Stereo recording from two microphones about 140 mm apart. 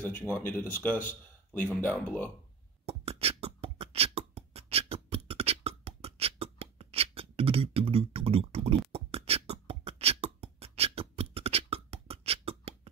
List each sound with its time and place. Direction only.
0.0 s speech: 10° left (ahead or behind)
2.8 s beatboxing: 45° right (ahead or behind)